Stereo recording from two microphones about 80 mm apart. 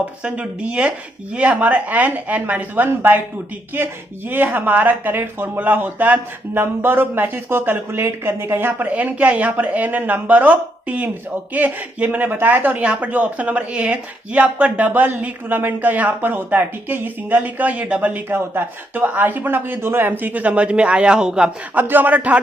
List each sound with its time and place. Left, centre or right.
0.2 s speech: centre
21.7 s speech: right